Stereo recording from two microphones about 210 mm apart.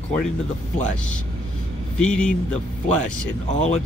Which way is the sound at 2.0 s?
5° left (ahead or behind).